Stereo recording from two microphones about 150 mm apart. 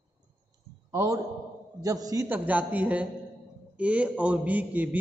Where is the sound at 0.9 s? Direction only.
25° right (ahead or behind).